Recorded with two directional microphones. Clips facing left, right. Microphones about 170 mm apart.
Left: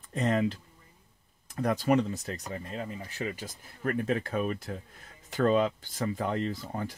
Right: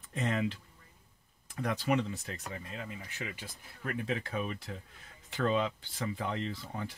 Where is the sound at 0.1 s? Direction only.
40° left (ahead or behind).